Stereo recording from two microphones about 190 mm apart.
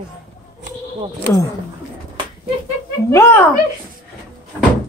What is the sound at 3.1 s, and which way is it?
Speech, 15° left (ahead or behind).